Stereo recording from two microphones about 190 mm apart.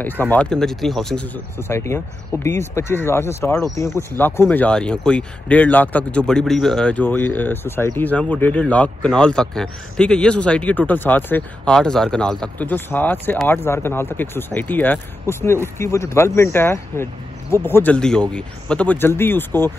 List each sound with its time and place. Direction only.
0.0 s speech: 10° left (ahead or behind)